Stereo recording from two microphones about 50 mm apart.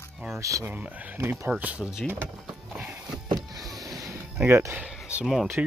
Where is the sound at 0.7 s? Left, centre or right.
Right.